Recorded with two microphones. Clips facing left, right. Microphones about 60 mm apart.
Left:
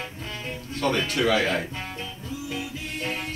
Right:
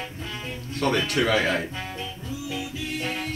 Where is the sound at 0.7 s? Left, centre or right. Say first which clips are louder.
Right 1 dB; right.